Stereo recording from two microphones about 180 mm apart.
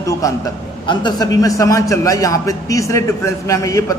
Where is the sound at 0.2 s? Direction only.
15° left (ahead or behind).